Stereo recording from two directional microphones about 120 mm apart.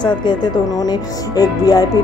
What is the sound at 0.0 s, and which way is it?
Speech, 40° left (ahead or behind).